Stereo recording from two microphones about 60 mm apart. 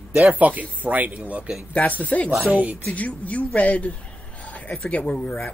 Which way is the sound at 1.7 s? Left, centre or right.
Left.